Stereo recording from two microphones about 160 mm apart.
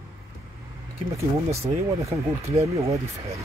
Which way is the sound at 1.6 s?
20° right (ahead or behind).